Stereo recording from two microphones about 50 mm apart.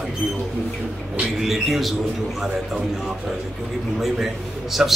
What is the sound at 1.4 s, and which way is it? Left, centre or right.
Speech, centre.